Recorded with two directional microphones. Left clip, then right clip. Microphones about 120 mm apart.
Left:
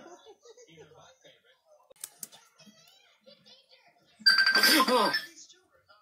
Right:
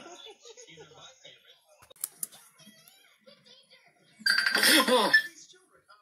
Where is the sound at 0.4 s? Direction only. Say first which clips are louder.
Right 3 dB; 25° right (ahead or behind).